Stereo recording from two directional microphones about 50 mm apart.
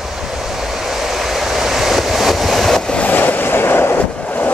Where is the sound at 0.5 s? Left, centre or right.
Centre.